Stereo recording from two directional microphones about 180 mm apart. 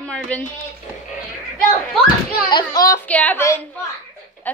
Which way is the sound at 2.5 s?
20° left (ahead or behind).